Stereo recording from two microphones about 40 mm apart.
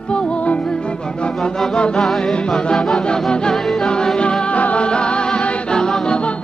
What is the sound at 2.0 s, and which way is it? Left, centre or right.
Music, centre.